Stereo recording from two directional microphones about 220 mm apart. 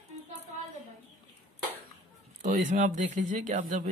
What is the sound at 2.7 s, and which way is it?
Speech, 35° right (ahead or behind).